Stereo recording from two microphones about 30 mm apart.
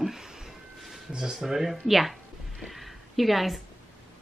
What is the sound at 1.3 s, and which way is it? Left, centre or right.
Speech, centre.